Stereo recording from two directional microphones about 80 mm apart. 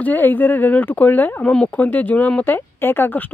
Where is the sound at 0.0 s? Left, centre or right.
Left.